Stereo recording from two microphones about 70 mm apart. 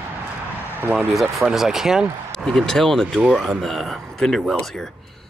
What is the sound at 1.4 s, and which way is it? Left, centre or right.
Speech, centre.